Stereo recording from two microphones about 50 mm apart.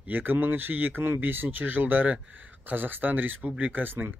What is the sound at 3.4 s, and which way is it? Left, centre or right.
Speech, right.